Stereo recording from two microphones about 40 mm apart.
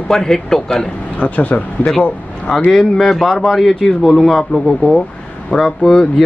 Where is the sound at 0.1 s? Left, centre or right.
Centre.